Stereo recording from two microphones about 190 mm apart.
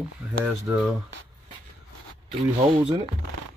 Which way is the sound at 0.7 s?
10° right (ahead or behind).